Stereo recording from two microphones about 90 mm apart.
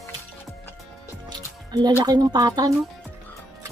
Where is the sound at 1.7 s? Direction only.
50° right (ahead or behind).